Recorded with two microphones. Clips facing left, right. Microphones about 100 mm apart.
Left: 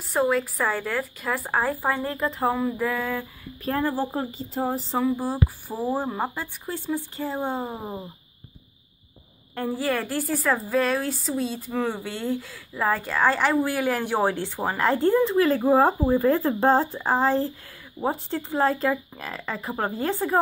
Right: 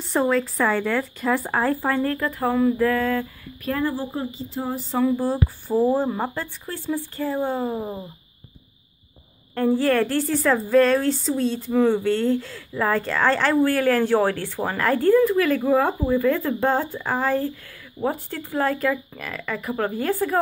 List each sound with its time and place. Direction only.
0.1 s speech: 5° left (ahead or behind)
1.6 s a woman's voice: 15° left (ahead or behind)
3.6 s speech: 35° left (ahead or behind)
4.9 s a woman's voice: 15° left (ahead or behind)
9.6 s a woman's voice: 5° left (ahead or behind); by 20.3 s 25° left (ahead or behind)